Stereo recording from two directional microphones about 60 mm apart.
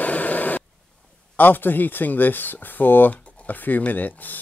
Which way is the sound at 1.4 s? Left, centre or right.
Left.